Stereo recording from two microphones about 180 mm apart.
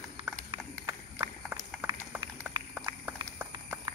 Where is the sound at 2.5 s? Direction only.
10° right (ahead or behind).